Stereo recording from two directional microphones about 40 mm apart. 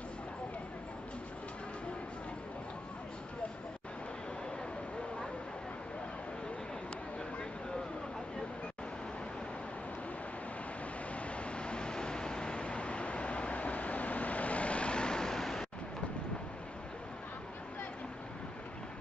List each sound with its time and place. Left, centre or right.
11.1 s vehicle: left; by 15.6 s centre